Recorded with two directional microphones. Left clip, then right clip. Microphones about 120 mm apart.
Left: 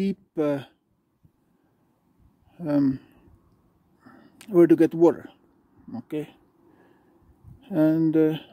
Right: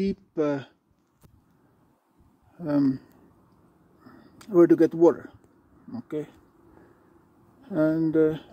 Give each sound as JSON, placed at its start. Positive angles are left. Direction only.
{"t": 0.0, "sound": "speech", "side_deg": 60}
{"t": 2.5, "sound": "speech", "side_deg": 45}
{"t": 7.7, "sound": "speech", "side_deg": 60}